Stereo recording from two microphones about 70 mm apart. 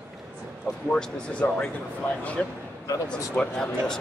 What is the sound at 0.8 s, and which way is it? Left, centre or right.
Speech, centre.